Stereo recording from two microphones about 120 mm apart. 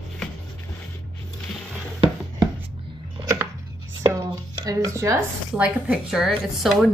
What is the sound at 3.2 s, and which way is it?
Chopping, 25° right (ahead or behind).